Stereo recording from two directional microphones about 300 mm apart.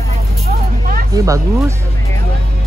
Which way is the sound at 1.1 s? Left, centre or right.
Centre.